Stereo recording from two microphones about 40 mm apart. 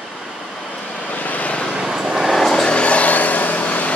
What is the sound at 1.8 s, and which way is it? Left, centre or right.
Vehicle, centre.